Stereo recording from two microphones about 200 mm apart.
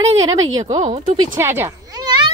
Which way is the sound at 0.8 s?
30° right (ahead or behind).